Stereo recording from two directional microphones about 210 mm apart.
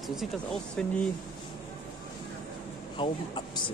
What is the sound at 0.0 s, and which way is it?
Speech, centre (ahead or behind).